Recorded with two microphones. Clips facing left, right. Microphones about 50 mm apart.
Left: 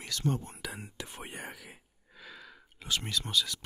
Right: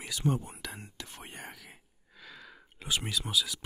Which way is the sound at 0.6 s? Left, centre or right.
Centre.